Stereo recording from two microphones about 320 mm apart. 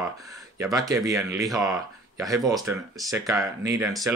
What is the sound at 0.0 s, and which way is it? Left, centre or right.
Speech, centre.